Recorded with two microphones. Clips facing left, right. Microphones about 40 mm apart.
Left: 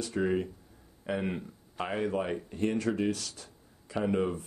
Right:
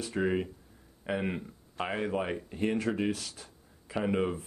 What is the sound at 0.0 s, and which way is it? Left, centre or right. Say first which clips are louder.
Speech: even; centre.